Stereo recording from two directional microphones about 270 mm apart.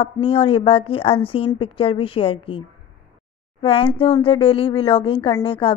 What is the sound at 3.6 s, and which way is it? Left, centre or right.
A woman's voice, centre.